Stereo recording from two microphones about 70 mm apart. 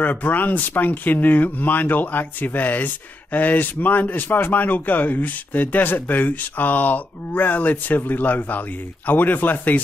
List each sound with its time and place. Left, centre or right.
0.0 s speech: left